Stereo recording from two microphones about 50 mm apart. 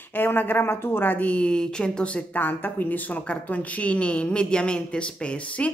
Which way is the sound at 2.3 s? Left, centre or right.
Left.